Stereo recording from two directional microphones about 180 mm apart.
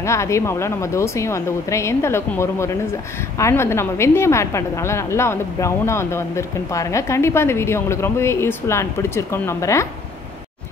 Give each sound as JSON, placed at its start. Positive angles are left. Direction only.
{"t": 0.0, "sound": "a woman's voice", "side_deg": 15}